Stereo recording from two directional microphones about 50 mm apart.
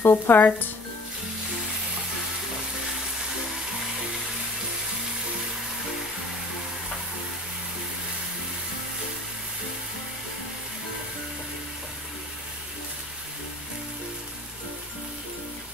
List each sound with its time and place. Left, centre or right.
0.0 s speech: left